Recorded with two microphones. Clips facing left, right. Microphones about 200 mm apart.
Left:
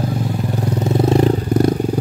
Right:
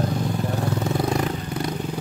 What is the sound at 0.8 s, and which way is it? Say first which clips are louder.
Vehicle: left 12 dB; 25° left (ahead or behind).